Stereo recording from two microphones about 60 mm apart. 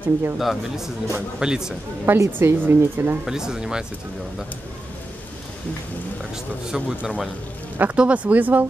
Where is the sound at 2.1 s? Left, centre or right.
Right.